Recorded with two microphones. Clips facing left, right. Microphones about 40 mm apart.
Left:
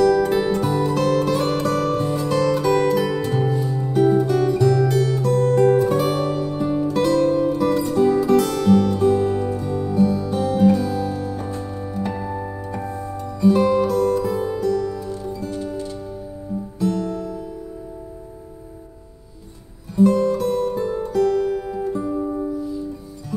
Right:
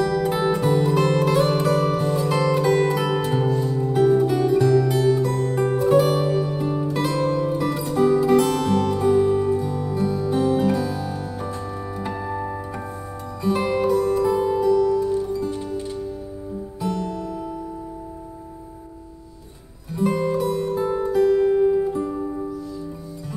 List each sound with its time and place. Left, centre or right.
0.0 s music: centre
2.0 s music: centre
2.2 s music: centre
3.3 s music: centre
4.3 s music: centre
7.1 s music: right
7.5 s music: centre; by 16.0 s right
16.8 s music: centre
19.9 s music: centre
20.4 s music: centre